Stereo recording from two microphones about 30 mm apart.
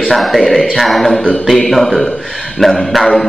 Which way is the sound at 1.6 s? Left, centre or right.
Centre.